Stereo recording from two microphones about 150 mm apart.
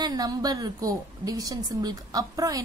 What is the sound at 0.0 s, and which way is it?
A woman's voice, 25° right (ahead or behind).